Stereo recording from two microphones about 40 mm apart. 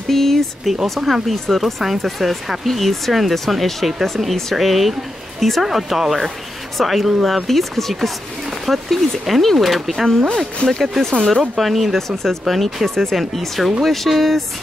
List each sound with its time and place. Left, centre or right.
0.1 s speech: centre
10.2 s speech: centre
10.8 s speech: centre